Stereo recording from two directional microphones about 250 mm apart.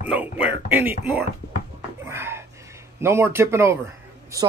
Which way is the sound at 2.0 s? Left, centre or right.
Centre.